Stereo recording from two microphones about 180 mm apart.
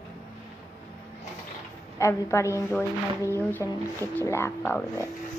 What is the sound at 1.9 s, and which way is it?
A woman's voice, 15° left (ahead or behind).